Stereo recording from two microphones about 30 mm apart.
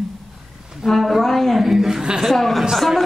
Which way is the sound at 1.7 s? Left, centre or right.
Centre.